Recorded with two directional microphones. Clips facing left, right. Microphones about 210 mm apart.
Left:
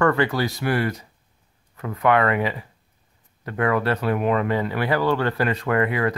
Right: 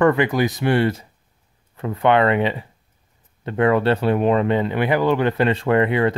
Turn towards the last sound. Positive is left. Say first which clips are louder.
# right 4 dB
turn(degrees=-25)  # may be behind; listen again after turning